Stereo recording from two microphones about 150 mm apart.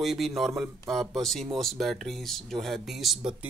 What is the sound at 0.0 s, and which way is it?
Speech, centre (ahead or behind).